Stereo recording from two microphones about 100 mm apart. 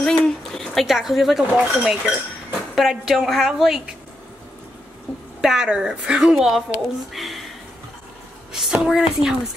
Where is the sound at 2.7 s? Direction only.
Centre (ahead or behind).